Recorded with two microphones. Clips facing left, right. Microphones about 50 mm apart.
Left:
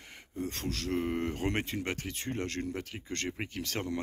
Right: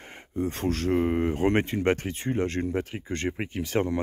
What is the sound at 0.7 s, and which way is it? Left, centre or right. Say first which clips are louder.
Speech: right 11 dB; right.